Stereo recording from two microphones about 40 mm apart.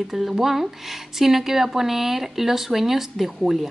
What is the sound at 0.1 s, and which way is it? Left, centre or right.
Speech, centre.